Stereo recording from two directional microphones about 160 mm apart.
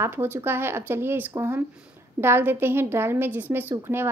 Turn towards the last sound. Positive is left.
turn(degrees=-15)  # may be behind; listen again after turning